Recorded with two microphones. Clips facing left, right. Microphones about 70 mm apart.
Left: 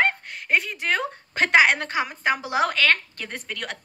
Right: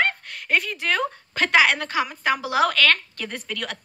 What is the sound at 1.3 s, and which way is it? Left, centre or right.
Speech, left.